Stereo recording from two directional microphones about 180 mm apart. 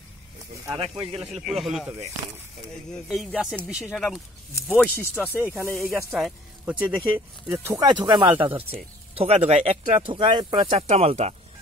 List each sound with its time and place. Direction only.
0.7 s speech: 30° right (ahead or behind)
1.2 s speech: 5° right (ahead or behind)
3.1 s speech: centre (ahead or behind)
5.3 s speech: 10° right (ahead or behind); by 11.3 s 35° right (ahead or behind)